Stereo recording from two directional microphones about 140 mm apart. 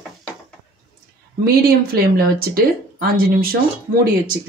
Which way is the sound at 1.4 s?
90° right.